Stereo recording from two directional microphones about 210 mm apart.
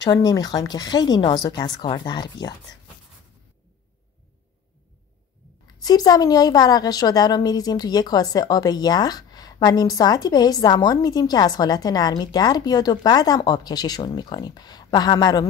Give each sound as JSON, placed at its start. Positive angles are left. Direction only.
{"t": 0.0, "sound": "a woman's voice", "side_deg": 20}
{"t": 5.8, "sound": "a woman's voice", "side_deg": 20}